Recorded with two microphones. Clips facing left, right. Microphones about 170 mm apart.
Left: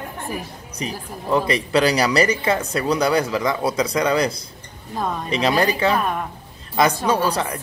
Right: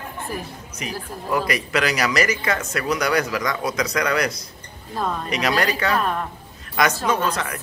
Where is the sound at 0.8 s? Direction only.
25° left (ahead or behind).